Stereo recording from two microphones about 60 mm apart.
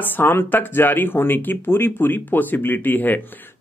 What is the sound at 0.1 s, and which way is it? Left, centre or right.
Speech, left.